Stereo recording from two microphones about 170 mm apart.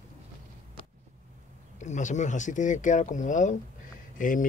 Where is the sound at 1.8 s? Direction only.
45° left (ahead or behind).